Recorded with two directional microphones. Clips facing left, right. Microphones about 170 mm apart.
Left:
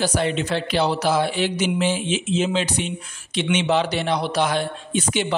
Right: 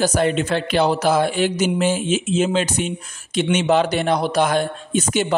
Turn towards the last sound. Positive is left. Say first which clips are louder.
# right 3 dB
turn(degrees=-45)  # may be behind; listen again after turning